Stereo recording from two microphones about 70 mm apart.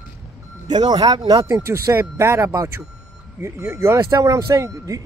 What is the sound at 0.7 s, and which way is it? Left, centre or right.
Speech, right.